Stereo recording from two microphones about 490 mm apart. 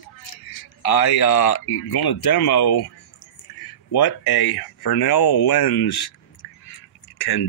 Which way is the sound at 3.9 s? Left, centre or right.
Left.